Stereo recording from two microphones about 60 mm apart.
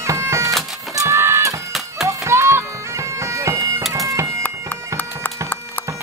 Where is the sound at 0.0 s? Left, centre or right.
Right.